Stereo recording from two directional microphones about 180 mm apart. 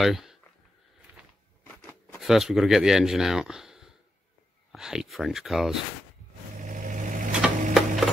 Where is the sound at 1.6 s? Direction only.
10° left (ahead or behind).